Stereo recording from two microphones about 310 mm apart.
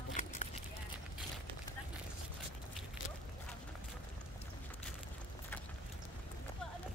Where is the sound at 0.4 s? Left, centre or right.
Left.